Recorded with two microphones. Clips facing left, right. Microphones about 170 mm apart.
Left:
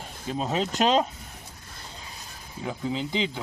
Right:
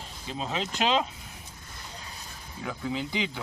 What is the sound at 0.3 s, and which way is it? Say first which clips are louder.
Speech: left 5 dB; 45° left (ahead or behind).